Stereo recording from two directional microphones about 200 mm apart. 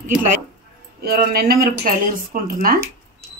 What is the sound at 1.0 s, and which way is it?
Speech, 50° right (ahead or behind).